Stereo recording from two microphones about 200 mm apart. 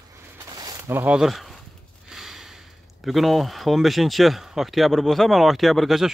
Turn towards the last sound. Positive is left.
turn(degrees=0)  # may be behind; listen again after turning